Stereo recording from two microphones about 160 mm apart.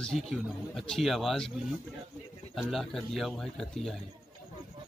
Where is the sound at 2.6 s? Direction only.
Centre (ahead or behind).